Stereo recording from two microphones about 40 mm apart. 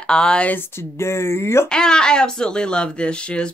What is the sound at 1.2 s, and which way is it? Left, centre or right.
Speech, left.